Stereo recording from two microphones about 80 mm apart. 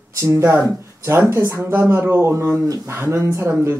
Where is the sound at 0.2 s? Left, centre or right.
Right.